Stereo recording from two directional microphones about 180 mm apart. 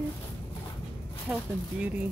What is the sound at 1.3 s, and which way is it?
Speech, 5° right (ahead or behind).